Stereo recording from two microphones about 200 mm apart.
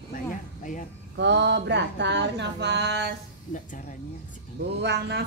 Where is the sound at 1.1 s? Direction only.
60° right (ahead or behind).